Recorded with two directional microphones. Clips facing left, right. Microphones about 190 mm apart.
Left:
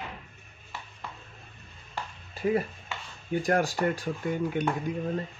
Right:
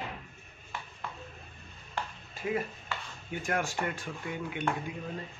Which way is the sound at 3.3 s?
35° left (ahead or behind).